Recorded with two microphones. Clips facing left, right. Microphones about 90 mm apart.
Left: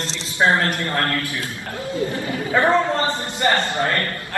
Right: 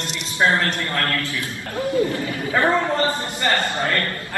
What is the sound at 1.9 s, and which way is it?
A man's voice, 25° left (ahead or behind).